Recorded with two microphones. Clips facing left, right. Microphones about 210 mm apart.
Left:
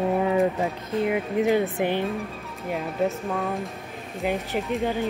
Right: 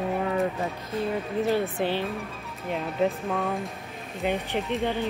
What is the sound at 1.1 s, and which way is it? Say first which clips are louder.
Speech: left 3 dB; 15° left (ahead or behind).